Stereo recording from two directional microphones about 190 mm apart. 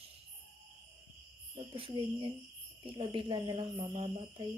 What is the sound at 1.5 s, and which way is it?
Speech, 30° right (ahead or behind).